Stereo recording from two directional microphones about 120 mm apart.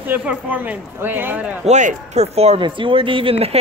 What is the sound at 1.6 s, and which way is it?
Speech, 80° right.